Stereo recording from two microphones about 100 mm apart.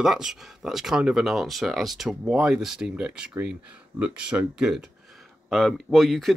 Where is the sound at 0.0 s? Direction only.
5° right (ahead or behind).